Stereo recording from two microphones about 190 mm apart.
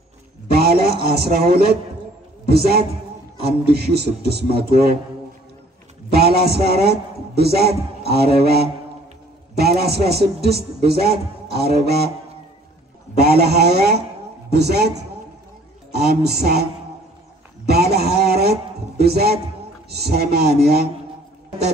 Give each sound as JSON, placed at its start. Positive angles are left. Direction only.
{"t": 0.5, "sound": "a sound", "side_deg": -55}
{"t": 1.0, "sound": "a man's voice", "side_deg": -55}
{"t": 6.1, "sound": "a man's voice", "side_deg": -55}
{"t": 13.2, "sound": "a man's voice", "side_deg": -60}
{"t": 17.6, "sound": "a sound", "side_deg": -55}
{"t": 19.9, "sound": "a man's voice", "side_deg": -55}